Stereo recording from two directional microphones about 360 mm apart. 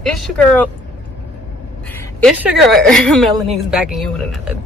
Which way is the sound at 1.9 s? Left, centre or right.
Centre.